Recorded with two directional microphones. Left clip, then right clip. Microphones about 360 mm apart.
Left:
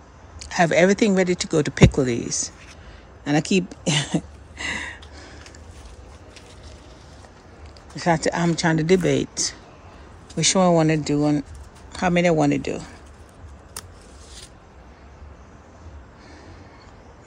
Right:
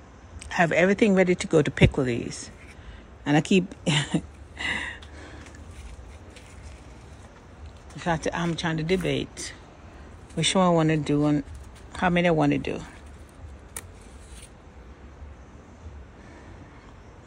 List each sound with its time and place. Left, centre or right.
0.4 s speech: centre
3.3 s speech: centre
3.8 s a sound: centre
8.0 s speech: centre
8.7 s speech: left
9.0 s speech: centre